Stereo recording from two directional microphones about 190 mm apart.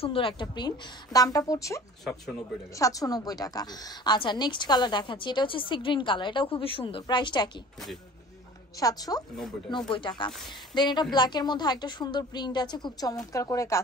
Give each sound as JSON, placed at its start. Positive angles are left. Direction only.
{"t": 0.0, "sound": "a woman's voice", "side_deg": 30}
{"t": 2.8, "sound": "a woman's voice", "side_deg": 20}
{"t": 8.7, "sound": "a woman's voice", "side_deg": 20}